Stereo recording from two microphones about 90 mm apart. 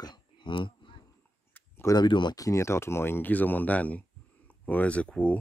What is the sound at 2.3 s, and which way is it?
Speech, 35° left (ahead or behind).